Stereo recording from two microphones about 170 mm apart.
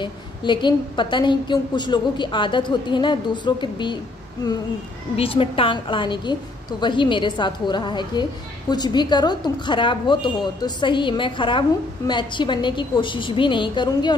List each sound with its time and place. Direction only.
0.0 s a woman's voice: 25° left (ahead or behind)
5.1 s a woman's voice: 35° left (ahead or behind)